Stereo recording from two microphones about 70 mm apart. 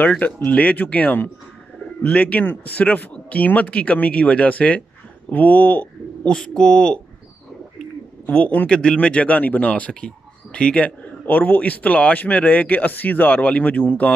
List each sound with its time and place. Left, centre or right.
0.0 s speech: left
6.3 s speech: centre
8.3 s speech: centre